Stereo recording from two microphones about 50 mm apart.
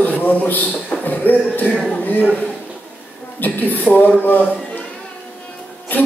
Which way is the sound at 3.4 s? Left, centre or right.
Left.